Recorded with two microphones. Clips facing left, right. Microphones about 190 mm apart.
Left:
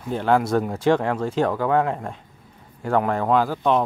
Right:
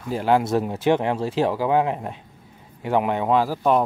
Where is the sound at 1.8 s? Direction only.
15° right (ahead or behind).